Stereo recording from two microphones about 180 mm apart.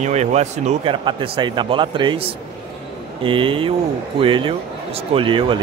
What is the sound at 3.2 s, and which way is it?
Speech, 30° right (ahead or behind).